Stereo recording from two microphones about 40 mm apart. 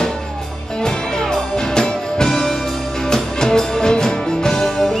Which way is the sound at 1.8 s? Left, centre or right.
Centre.